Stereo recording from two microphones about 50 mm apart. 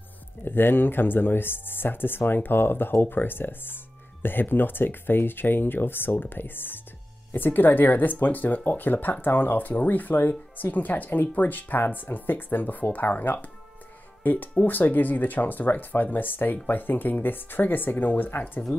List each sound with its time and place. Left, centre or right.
0.5 s speech: left